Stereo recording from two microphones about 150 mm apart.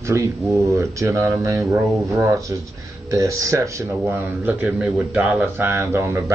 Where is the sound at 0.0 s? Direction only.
20° right (ahead or behind).